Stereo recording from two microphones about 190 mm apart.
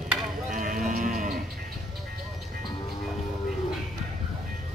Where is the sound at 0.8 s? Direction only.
45° right (ahead or behind).